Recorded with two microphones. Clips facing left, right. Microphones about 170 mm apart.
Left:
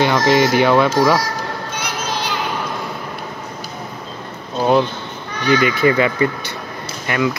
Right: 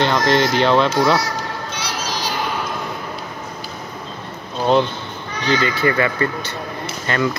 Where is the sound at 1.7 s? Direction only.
55° left (ahead or behind).